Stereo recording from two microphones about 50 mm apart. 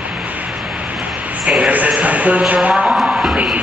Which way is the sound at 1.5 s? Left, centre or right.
Right.